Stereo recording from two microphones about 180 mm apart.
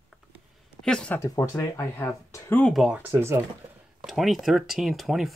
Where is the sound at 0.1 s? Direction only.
Centre (ahead or behind).